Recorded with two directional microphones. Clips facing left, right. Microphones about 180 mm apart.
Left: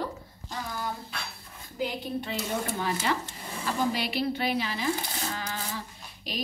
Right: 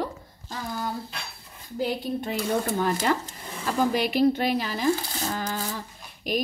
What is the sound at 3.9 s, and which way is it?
Speech, 45° right (ahead or behind).